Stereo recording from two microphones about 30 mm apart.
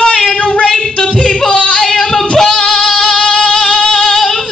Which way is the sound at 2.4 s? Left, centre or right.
Left.